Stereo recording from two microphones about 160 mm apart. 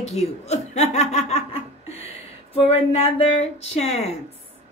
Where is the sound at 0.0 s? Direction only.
45° left (ahead or behind).